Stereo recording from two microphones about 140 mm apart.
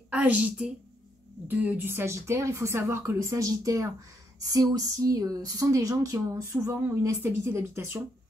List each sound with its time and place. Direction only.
0.1 s a woman's voice: 10° right (ahead or behind)